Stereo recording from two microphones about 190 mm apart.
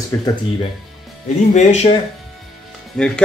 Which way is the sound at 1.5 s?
35° left (ahead or behind).